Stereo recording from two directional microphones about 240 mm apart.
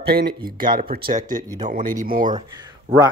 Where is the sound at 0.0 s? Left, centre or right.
Right.